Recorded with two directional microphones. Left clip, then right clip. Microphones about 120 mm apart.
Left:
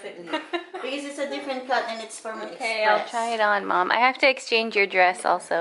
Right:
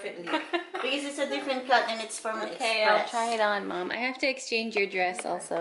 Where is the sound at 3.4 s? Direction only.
25° left (ahead or behind).